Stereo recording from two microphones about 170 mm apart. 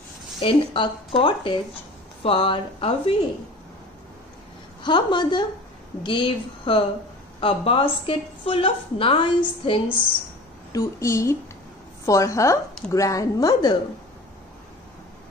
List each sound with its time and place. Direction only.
0.4 s a woman's voice: 30° left (ahead or behind)
4.8 s a woman's voice: 25° left (ahead or behind)
10.7 s a woman's voice: 15° left (ahead or behind)